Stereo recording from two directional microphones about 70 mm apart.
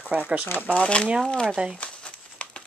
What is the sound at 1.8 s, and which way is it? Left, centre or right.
Crumpling, centre.